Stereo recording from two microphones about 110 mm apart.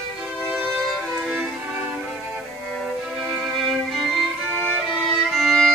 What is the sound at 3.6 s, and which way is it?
Violin, centre (ahead or behind).